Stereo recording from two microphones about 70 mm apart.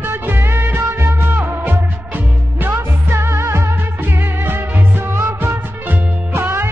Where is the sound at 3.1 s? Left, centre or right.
Right.